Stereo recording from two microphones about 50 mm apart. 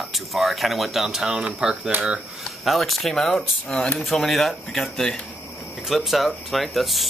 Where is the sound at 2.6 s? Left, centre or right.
Centre.